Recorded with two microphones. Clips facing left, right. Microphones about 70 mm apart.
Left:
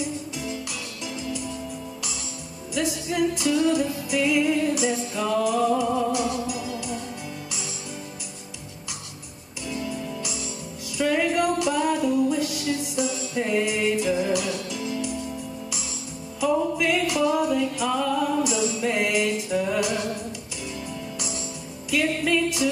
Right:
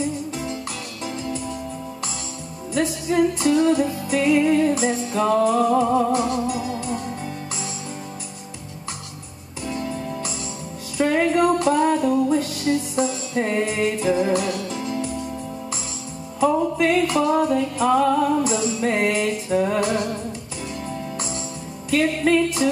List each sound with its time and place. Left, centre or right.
2.7 s music: right
9.7 s music: right
16.7 s music: right
21.9 s music: right